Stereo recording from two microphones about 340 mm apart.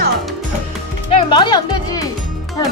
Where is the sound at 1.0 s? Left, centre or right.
Centre.